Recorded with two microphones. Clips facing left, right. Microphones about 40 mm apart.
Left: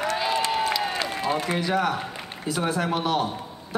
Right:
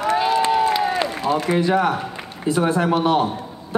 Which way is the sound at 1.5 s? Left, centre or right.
Centre.